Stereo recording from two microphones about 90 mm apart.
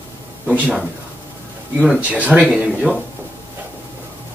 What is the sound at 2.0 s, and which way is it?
Speech, 15° right (ahead or behind).